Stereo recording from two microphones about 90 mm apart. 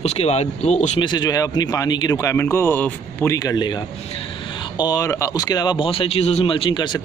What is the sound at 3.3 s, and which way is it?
Speech, 45° left (ahead or behind).